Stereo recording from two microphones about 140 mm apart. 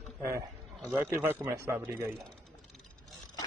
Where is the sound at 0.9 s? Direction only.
15° right (ahead or behind).